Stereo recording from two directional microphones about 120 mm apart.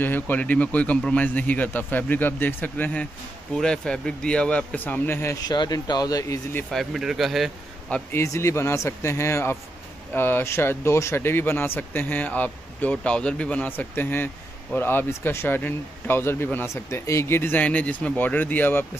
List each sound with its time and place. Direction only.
0.0 s speech: 15° left (ahead or behind)
5.4 s speech: 35° left (ahead or behind)
6.7 s speech: centre (ahead or behind)
8.1 s speech: 20° left (ahead or behind)